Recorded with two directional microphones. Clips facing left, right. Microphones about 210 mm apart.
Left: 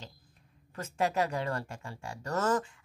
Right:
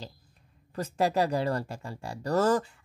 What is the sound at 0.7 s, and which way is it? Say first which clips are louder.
Speech: right 4 dB; 35° right (ahead or behind).